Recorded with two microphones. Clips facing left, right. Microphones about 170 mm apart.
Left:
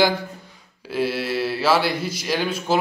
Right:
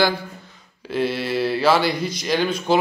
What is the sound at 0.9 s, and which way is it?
Speech, 5° left (ahead or behind).